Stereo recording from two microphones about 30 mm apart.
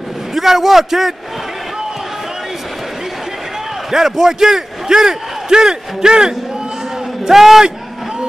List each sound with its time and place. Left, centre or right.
0.3 s a man's voice: centre
3.9 s a man's voice: centre
7.2 s a man's voice: centre